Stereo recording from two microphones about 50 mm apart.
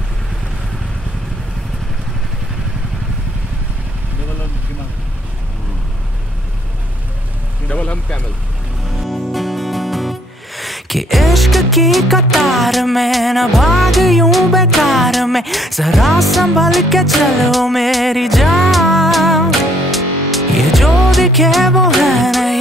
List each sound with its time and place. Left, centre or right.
7.6 s vehicle: left
8.9 s music: centre